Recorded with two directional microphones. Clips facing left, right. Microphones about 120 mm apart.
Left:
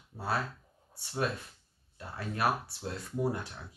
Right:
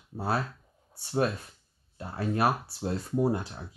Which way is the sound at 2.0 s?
35° right (ahead or behind).